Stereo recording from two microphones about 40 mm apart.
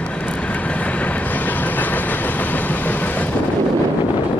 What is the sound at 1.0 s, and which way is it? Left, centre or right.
Train, left.